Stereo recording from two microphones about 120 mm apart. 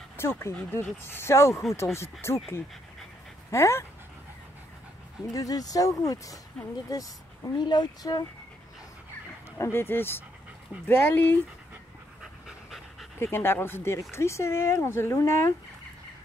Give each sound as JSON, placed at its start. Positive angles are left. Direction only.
{"t": 0.2, "sound": "speech", "side_deg": 20}
{"t": 3.5, "sound": "speech", "side_deg": 25}
{"t": 5.3, "sound": "speech", "side_deg": 30}
{"t": 9.6, "sound": "speech", "side_deg": 20}
{"t": 12.2, "sound": "pant", "side_deg": -5}
{"t": 13.2, "sound": "speech", "side_deg": 20}